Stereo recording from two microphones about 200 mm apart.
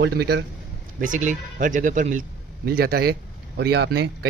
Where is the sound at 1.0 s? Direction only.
40° right (ahead or behind).